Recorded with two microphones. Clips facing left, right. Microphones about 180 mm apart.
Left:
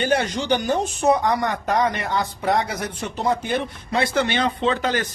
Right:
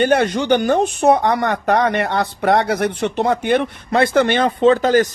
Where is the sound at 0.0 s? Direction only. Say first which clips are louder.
Right 6 dB; 60° right (ahead or behind).